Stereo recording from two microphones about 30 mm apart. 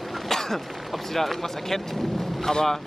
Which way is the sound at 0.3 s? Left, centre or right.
Centre.